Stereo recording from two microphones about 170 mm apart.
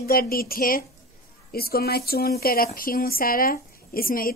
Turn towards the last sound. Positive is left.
turn(degrees=60)  # may be behind; listen again after turning